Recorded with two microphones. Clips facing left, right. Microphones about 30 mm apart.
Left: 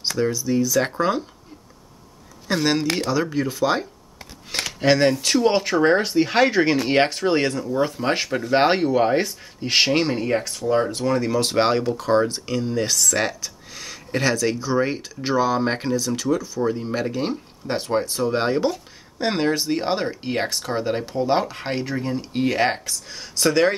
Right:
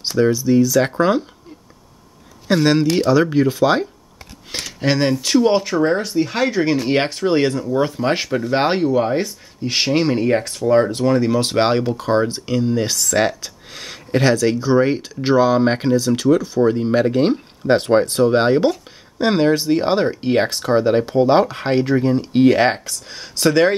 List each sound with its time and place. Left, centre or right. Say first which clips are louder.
0.2 s speech: right 7 dB; right
2.4 s speech: right 6 dB; centre
4.5 s a sound: left 2 dB; centre
4.8 s speech: even; centre
5.6 s speech: even; centre
10.1 s speech: right 5 dB; centre; by 18.2 s right
18.2 s speech: right 5 dB; right
18.7 s speech: right 6 dB; centre